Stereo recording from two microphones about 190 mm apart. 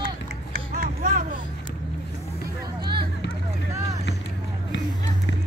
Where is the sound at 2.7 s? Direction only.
25° right (ahead or behind).